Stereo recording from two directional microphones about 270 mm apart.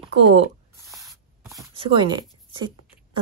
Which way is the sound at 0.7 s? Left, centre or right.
Centre.